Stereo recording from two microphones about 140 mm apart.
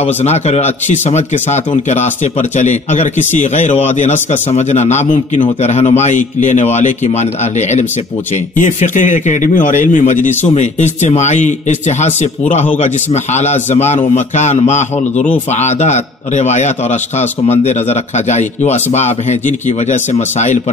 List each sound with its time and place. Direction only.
0.0 s a man's voice: 50° left (ahead or behind)
8.5 s a man's voice: 65° left (ahead or behind)